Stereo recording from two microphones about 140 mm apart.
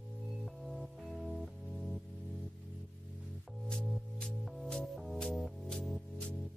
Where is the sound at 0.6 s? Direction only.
Centre (ahead or behind).